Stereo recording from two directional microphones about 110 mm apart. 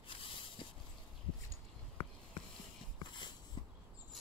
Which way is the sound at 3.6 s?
45° left (ahead or behind).